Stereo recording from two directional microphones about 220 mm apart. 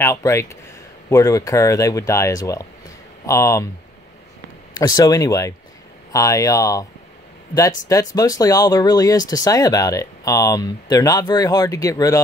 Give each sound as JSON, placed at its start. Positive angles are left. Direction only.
{"t": 0.0, "sound": "speech", "side_deg": 15}
{"t": 4.7, "sound": "speech", "side_deg": 15}
{"t": 7.9, "sound": "speech", "side_deg": 15}